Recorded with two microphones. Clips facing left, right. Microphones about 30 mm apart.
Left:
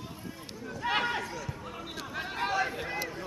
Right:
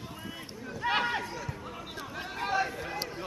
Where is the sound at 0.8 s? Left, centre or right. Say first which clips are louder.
Right 1 dB; centre.